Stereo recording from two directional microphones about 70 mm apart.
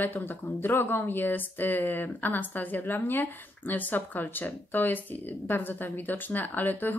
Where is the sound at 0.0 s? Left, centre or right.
Left.